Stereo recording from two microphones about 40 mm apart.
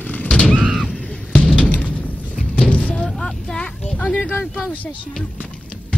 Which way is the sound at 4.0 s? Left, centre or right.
Left.